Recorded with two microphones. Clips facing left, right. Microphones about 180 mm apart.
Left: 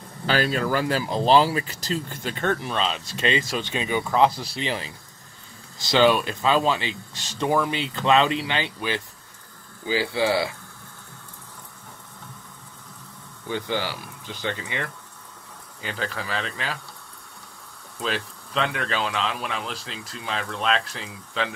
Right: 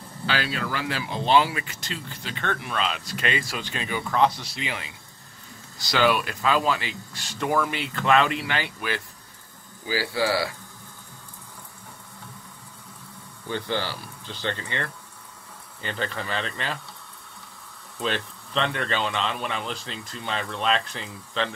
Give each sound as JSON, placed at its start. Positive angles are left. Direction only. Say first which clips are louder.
{"t": 0.3, "sound": "speech", "louder": "left 6 dB", "side_deg": 45}
{"t": 13.5, "sound": "speech", "louder": "left 1 dB", "side_deg": 15}
{"t": 17.9, "sound": "speech", "louder": "even", "side_deg": 0}